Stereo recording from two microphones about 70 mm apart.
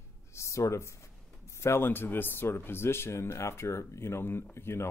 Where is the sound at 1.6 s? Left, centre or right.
Left.